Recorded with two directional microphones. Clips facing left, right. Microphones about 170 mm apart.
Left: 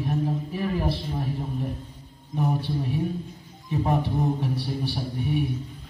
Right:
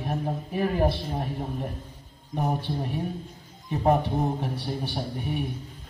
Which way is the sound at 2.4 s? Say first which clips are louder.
Left 2 dB; 40° right (ahead or behind).